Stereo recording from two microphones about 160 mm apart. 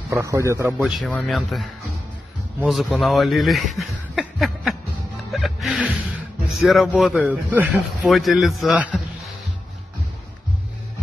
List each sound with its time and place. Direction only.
0.1 s a man's voice: 20° right (ahead or behind)
1.0 s a man's voice: 5° left (ahead or behind)
5.3 s music: centre (ahead or behind)
6.6 s a man's voice: centre (ahead or behind)